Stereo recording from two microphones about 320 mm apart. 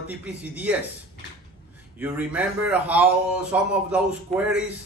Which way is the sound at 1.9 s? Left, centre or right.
Centre.